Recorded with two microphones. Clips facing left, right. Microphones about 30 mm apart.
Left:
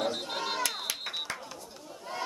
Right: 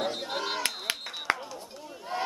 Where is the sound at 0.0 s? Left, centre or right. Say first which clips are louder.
Right 1 dB; centre.